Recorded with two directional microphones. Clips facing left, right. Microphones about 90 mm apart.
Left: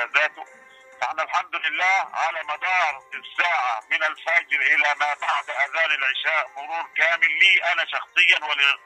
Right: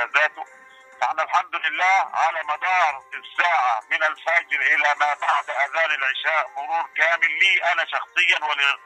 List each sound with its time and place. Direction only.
0.0 s music: 35° right (ahead or behind)
0.9 s a man's voice: 35° right (ahead or behind)